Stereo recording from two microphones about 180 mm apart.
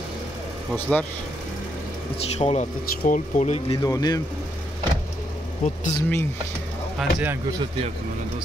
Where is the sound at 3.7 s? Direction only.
20° left (ahead or behind).